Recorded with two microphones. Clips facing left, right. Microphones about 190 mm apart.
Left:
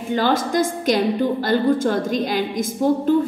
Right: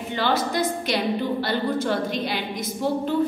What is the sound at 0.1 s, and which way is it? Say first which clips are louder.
A woman's voice: left 5 dB; 45° left (ahead or behind).